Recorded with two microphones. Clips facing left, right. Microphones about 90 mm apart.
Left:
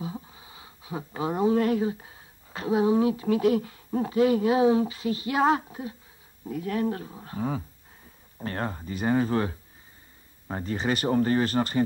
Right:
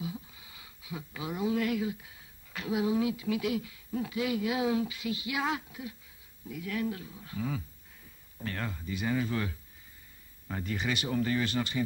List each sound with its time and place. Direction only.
0.0 s speech: 35° left (ahead or behind)